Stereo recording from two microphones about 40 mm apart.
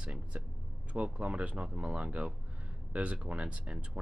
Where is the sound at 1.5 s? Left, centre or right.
Right.